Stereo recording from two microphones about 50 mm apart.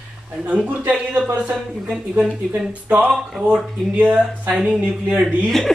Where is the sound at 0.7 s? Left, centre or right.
Right.